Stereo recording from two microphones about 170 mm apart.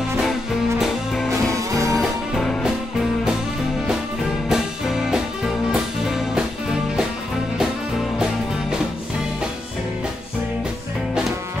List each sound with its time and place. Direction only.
0.2 s music: centre (ahead or behind)
1.5 s music: 20° right (ahead or behind)
2.0 s music: centre (ahead or behind)
4.5 s music: centre (ahead or behind)